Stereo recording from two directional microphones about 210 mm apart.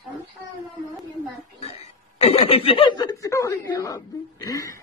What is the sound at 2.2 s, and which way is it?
Speech, 30° left (ahead or behind).